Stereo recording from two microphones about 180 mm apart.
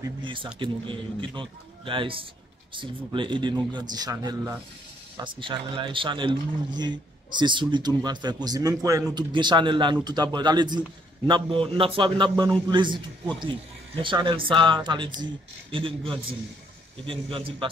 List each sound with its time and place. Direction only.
0.2 s a man's voice: 25° right (ahead or behind)